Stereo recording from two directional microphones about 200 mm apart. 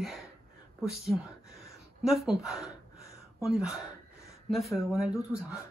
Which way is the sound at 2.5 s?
15° left (ahead or behind).